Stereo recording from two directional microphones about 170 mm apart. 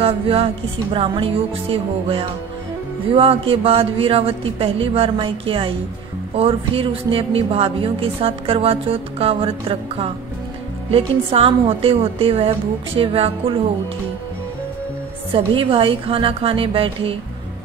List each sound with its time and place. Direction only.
0.0 s a woman's voice: 35° right (ahead or behind)
15.3 s a woman's voice: 35° right (ahead or behind)